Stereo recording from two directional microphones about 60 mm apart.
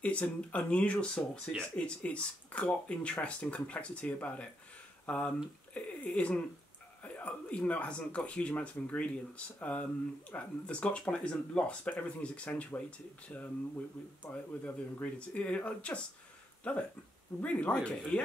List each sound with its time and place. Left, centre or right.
0.0 s speech: left
13.3 s speech: left